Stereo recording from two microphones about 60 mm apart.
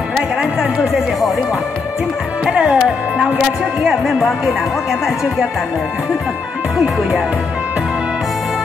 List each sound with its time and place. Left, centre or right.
0.4 s music: centre
2.5 s music: centre
3.8 s speech: centre